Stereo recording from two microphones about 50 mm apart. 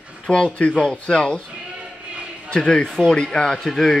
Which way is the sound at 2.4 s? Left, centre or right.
Centre.